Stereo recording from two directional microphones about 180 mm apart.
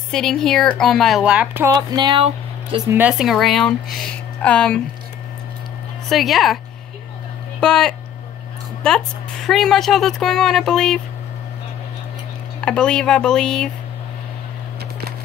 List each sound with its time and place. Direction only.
0.1 s a woman's voice: 5° left (ahead or behind)
1.7 s speech: 20° right (ahead or behind)
2.9 s a woman's voice: 5° right (ahead or behind)
6.0 s a woman's voice: centre (ahead or behind)
7.6 s a woman's voice: 5° left (ahead or behind)
12.5 s a woman's voice: 5° left (ahead or behind)